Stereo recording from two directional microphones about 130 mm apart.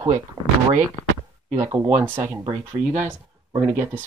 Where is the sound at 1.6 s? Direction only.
20° right (ahead or behind).